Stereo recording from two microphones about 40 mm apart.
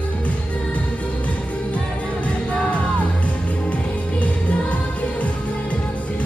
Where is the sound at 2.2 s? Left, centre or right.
Left.